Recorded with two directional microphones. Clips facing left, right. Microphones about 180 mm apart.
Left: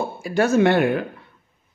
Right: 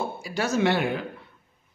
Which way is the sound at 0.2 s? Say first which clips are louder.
Left 8 dB; 55° left (ahead or behind).